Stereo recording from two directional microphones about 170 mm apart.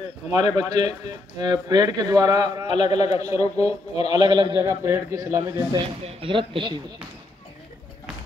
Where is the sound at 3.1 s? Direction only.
20° right (ahead or behind).